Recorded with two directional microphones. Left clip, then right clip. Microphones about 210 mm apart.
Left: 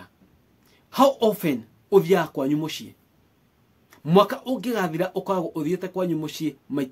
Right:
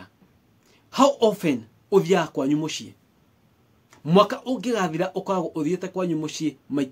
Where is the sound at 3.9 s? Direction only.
5° left (ahead or behind).